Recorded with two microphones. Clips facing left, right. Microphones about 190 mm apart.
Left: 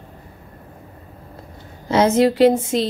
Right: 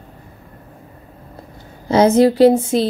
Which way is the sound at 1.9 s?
35° right (ahead or behind).